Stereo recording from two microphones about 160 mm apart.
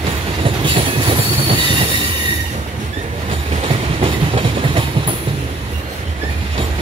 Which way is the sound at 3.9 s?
35° right (ahead or behind).